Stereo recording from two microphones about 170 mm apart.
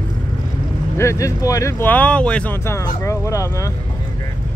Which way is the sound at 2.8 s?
15° left (ahead or behind).